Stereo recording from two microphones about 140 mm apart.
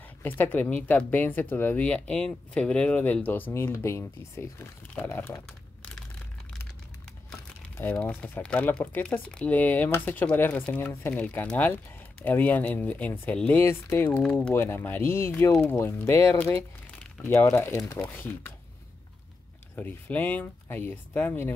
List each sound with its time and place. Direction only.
0.2 s speech: 15° left (ahead or behind)
7.7 s speech: 10° left (ahead or behind)
19.7 s speech: 10° left (ahead or behind)